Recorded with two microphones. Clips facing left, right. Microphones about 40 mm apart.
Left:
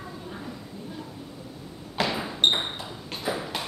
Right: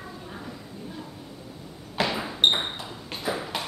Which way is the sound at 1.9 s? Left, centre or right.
Centre.